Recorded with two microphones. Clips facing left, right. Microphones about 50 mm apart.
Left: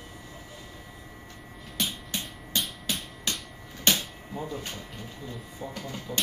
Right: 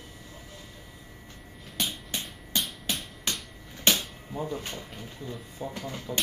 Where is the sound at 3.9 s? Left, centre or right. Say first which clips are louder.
Even; centre.